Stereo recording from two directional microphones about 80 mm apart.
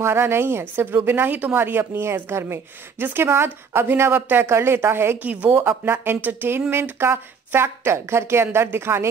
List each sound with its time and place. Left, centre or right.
0.0 s speech: right